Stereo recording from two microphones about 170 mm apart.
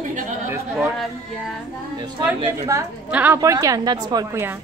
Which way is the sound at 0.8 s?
Centre (ahead or behind).